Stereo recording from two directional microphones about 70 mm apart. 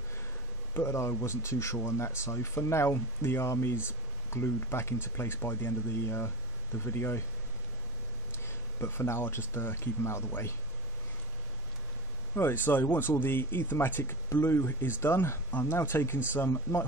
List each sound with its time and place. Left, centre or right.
0.7 s speech: left
8.5 s speech: left
12.4 s speech: left